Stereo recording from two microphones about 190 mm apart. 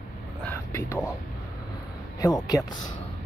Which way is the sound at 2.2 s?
20° left (ahead or behind).